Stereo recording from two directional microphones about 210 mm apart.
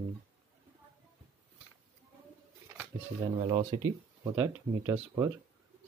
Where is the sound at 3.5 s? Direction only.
25° right (ahead or behind).